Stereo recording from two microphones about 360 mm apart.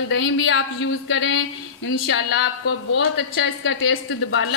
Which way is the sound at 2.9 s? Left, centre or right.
Left.